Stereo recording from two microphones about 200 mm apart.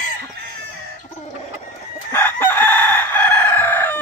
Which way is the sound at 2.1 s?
10° left (ahead or behind).